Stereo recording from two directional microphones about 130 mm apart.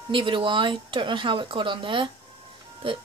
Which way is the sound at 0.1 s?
40° right (ahead or behind).